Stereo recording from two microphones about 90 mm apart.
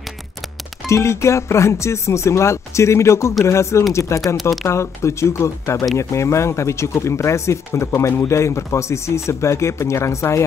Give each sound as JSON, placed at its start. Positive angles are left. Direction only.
{"t": 0.8, "sound": "speech", "side_deg": 30}